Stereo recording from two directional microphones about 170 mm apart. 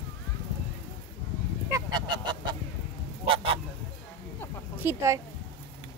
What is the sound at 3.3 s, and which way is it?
Honk, 35° right (ahead or behind).